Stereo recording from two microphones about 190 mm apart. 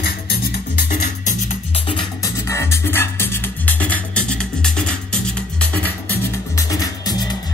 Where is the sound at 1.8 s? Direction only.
20° left (ahead or behind); by 4.9 s 5° left (ahead or behind).